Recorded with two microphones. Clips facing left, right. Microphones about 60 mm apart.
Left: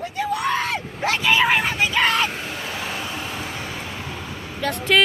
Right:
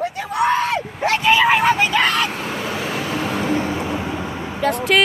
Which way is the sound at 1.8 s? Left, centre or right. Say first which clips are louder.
Right 2 dB; right.